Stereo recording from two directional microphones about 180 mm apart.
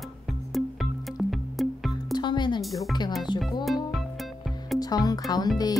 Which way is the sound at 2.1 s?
25° left (ahead or behind).